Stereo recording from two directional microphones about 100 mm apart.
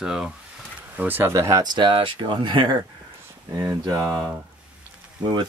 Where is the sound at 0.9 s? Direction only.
20° right (ahead or behind).